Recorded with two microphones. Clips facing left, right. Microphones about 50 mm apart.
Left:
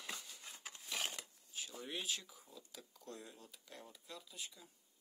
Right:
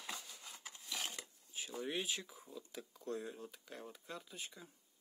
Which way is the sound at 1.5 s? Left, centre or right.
Centre.